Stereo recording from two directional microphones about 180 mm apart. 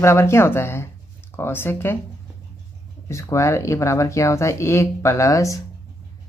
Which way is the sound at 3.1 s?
15° left (ahead or behind).